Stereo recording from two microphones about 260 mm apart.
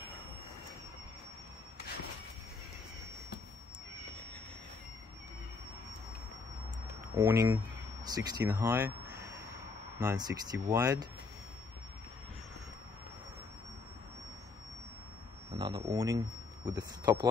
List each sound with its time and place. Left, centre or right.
7.2 s speech: centre
9.9 s speech: centre
15.5 s speech: centre